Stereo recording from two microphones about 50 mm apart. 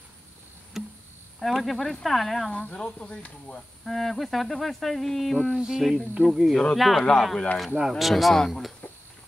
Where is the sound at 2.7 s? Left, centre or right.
Centre.